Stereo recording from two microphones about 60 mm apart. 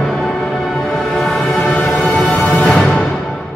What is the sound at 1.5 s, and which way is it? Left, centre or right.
Music, centre.